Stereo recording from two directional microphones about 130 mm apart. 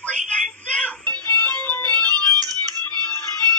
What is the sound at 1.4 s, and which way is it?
Music, 15° left (ahead or behind).